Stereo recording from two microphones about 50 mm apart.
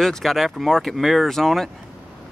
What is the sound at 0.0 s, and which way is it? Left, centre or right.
Speech, centre.